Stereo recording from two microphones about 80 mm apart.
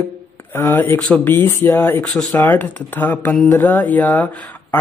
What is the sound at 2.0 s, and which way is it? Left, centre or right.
Speech, centre.